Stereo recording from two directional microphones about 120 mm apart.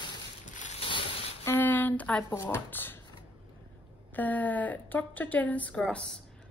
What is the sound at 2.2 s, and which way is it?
Speech, 20° left (ahead or behind).